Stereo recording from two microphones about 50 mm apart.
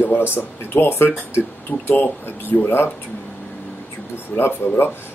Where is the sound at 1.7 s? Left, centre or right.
Left.